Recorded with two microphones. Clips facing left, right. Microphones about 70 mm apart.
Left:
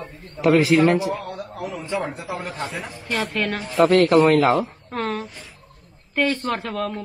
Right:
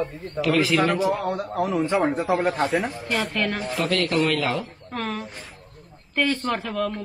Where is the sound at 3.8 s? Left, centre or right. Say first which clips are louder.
Left 9 dB; left.